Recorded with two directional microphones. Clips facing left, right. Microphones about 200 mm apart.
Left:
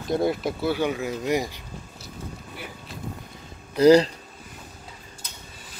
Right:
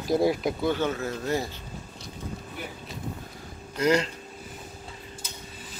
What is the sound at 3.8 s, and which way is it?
Speech, 35° left (ahead or behind).